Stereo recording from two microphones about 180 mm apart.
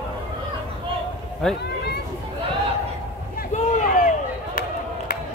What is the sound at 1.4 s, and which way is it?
Speech, centre (ahead or behind).